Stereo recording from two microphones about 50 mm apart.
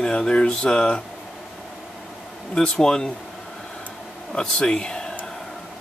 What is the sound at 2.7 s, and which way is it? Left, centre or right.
Speech, centre.